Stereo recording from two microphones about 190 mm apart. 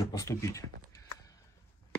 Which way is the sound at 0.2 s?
15° left (ahead or behind).